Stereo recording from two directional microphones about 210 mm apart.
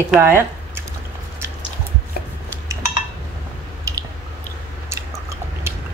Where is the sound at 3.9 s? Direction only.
15° right (ahead or behind).